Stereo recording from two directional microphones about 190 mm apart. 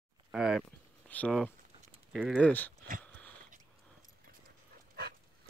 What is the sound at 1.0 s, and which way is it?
Speech, 5° left (ahead or behind).